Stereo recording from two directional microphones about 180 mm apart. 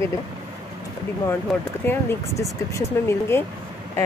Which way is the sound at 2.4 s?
15° left (ahead or behind).